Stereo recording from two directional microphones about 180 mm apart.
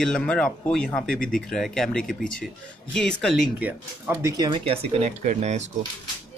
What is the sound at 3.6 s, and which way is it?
Speech, 10° right (ahead or behind).